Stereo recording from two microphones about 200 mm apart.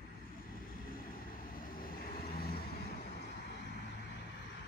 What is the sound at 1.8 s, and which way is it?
Vehicle, 50° left (ahead or behind).